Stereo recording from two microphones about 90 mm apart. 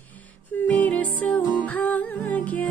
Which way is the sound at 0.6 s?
15° left (ahead or behind).